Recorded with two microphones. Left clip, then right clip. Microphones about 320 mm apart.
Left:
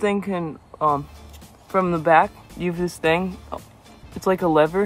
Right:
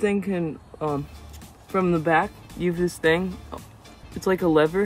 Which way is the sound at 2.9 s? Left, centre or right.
Left.